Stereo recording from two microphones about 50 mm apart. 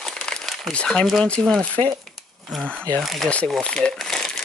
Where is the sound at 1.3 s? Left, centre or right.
Centre.